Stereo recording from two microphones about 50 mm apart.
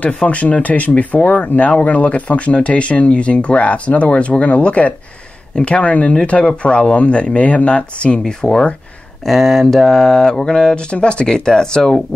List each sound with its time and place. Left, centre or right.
0.0 s speech: left
8.2 s speech: centre
9.2 s speech: centre